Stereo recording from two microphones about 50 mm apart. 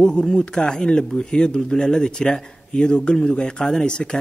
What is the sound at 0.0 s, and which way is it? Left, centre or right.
Speech, centre.